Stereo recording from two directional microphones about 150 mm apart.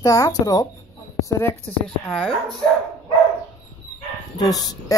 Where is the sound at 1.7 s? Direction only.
10° left (ahead or behind).